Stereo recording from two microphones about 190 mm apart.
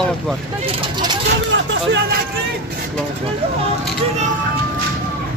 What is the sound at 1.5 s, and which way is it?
Speech, 70° right (ahead or behind).